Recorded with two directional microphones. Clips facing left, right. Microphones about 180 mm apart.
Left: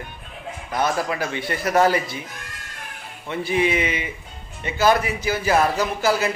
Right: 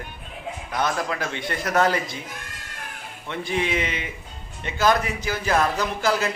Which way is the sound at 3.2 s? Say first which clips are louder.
Left 5 dB; 5° left (ahead or behind).